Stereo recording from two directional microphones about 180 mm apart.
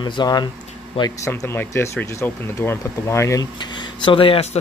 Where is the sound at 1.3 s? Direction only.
15° left (ahead or behind).